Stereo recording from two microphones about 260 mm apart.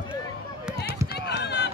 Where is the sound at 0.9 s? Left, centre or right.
Centre.